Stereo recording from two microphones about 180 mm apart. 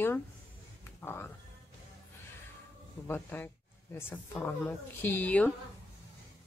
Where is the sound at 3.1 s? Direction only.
10° left (ahead or behind).